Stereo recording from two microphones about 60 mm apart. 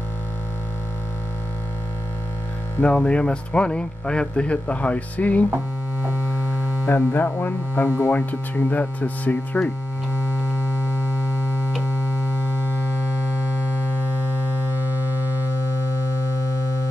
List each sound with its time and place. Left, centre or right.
2.8 s speech: centre
6.9 s speech: left
15.5 s music: left